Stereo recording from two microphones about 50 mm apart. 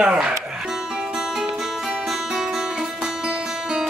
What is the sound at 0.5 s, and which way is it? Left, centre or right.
Music, centre.